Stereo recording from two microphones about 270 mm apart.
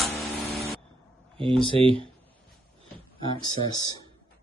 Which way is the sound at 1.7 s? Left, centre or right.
Centre.